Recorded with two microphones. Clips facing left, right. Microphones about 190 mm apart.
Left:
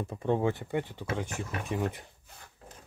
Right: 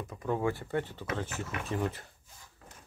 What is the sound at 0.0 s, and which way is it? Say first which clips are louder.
Speech: left 3 dB; 30° left (ahead or behind).